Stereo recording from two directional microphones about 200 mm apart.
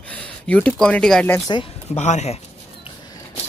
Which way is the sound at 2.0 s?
35° left (ahead or behind).